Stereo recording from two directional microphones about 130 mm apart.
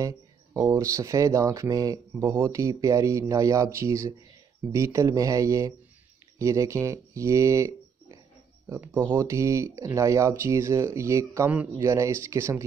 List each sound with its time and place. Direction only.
0.6 s speech: 20° right (ahead or behind)